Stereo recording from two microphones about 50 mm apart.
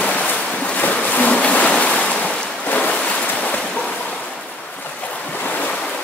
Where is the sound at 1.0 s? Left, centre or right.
Left.